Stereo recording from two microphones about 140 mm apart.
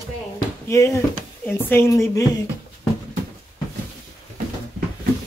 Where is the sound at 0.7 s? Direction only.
20° left (ahead or behind).